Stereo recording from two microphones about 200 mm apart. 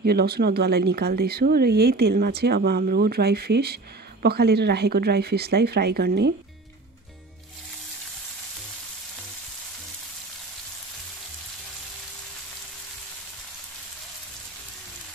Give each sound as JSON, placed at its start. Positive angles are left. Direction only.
{"t": 0.0, "sound": "speech", "side_deg": -50}